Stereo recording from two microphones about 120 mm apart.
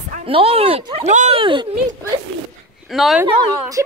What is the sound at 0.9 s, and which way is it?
Speech, 80° right.